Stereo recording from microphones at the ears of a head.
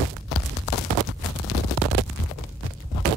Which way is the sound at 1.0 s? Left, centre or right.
Left.